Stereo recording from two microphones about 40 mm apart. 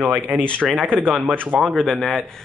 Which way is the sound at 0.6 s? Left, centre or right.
Centre.